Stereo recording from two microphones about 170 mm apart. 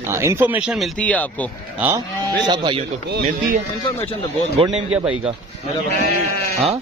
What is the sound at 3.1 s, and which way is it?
Speech, 65° right (ahead or behind).